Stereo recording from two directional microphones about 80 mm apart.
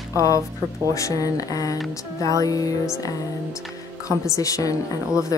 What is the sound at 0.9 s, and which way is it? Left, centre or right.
A woman's voice, left.